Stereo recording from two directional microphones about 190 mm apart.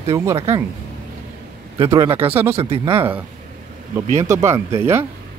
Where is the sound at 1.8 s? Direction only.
20° right (ahead or behind).